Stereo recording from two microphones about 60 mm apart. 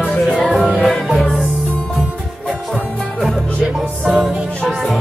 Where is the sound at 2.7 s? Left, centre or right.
Centre.